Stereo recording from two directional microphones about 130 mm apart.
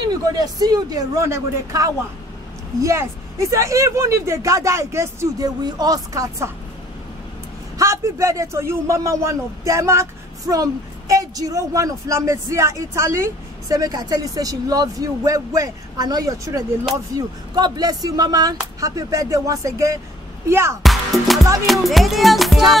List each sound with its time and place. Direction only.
0.1 s a man's voice: 30° right (ahead or behind)
7.8 s a man's voice: 25° right (ahead or behind)
20.8 s music: centre (ahead or behind)